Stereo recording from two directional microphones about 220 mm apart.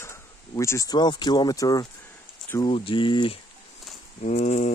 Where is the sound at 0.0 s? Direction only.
10° left (ahead or behind).